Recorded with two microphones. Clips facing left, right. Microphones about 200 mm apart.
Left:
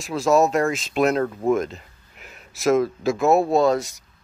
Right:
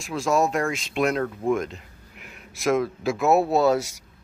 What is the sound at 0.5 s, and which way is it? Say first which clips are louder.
Speech: left 4 dB; 40° left (ahead or behind).